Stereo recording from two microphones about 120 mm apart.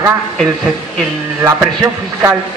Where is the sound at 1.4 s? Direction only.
25° right (ahead or behind).